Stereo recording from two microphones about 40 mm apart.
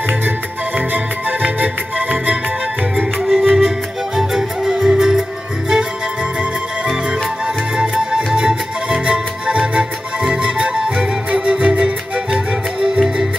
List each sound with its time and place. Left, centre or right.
0.7 s music: right
3.3 s music: centre
4.2 s music: centre
7.4 s music: right